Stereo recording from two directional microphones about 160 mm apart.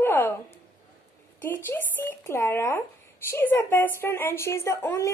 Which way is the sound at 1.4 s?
10° left (ahead or behind).